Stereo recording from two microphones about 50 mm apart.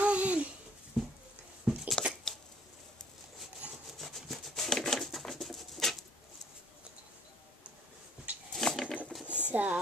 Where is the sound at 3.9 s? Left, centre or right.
Centre.